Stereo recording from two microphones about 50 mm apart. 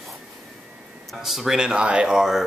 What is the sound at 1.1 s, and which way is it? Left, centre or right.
Speech, centre.